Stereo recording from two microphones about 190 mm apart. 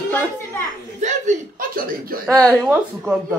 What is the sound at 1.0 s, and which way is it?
Chuckle, 40° right (ahead or behind).